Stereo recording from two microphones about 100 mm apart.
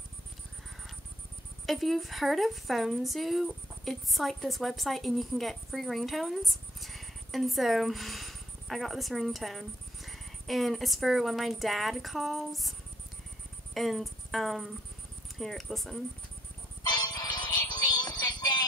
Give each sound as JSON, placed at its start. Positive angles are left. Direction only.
{"t": 1.7, "sound": "a woman's voice", "side_deg": 0}
{"t": 13.7, "sound": "music", "side_deg": 0}
{"t": 15.3, "sound": "a woman's voice", "side_deg": 0}
{"t": 16.8, "sound": "synthetic singing", "side_deg": 45}